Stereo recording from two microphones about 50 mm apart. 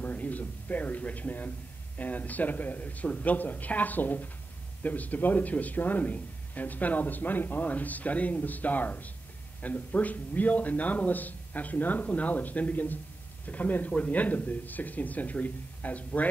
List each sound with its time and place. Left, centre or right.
0.0 s a man's voice: left